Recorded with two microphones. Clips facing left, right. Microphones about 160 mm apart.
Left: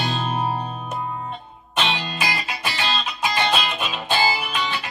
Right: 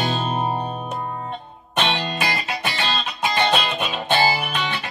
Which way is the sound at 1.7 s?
55° right (ahead or behind).